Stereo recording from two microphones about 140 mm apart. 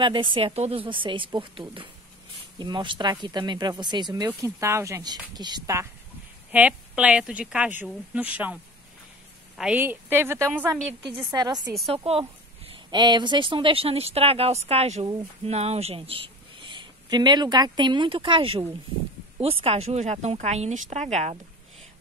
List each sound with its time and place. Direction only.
0.0 s speech: 35° right (ahead or behind)
4.3 s speech: 20° right (ahead or behind)
6.5 s a woman's voice: 10° right (ahead or behind)
9.6 s a woman's voice: 10° right (ahead or behind)
11.2 s speech: 30° right (ahead or behind)
11.9 s speech: 40° right (ahead or behind)